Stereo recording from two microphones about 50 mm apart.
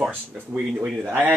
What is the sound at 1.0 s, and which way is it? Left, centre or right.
Speech, right.